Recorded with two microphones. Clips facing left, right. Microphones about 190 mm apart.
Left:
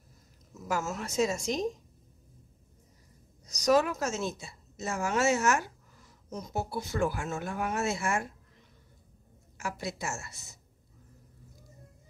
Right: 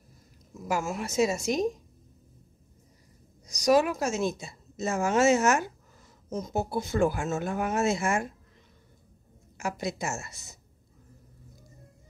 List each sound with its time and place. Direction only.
0.7 s a woman's voice: 10° right (ahead or behind)
3.4 s a woman's voice: 10° right (ahead or behind)
9.6 s a woman's voice: 20° right (ahead or behind)